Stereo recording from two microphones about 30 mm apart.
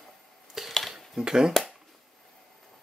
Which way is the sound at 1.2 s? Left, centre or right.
Right.